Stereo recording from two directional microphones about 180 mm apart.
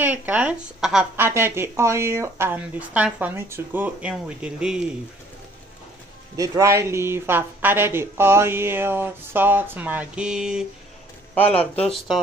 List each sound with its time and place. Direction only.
0.0 s speech: 10° right (ahead or behind)
6.3 s speech: 20° right (ahead or behind)